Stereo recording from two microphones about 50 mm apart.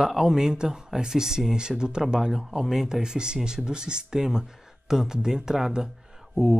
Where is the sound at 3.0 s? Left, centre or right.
Centre.